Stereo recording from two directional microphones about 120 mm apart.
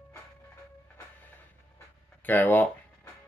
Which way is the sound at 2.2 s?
15° left (ahead or behind).